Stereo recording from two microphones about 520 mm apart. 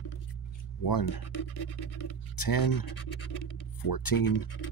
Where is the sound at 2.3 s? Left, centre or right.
Left.